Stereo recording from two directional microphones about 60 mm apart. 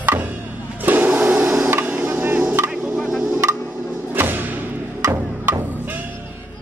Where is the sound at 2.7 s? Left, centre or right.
Centre.